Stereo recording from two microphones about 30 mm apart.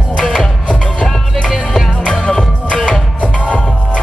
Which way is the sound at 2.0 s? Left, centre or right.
Left.